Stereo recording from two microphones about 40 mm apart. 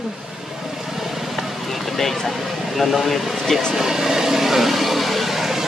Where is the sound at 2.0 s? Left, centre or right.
Centre.